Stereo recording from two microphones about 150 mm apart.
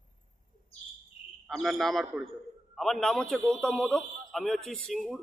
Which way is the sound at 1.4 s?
Centre (ahead or behind).